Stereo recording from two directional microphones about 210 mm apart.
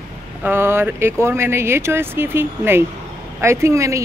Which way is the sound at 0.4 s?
10° right (ahead or behind).